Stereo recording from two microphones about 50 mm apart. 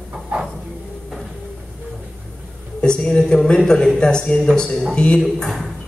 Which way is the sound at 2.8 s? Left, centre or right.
Centre.